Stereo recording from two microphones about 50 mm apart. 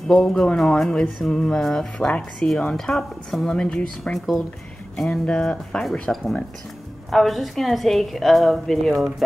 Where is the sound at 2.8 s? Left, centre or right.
Centre.